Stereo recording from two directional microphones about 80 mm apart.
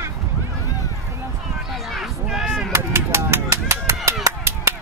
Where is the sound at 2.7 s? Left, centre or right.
Right.